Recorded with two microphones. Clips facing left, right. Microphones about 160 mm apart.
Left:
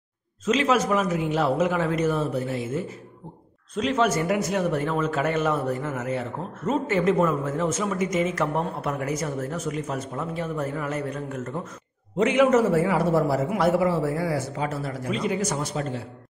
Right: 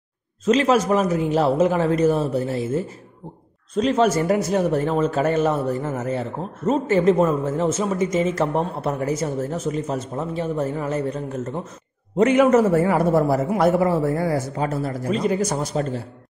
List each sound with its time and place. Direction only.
0.5 s a man's voice: 35° right (ahead or behind)
12.2 s a man's voice: 45° right (ahead or behind)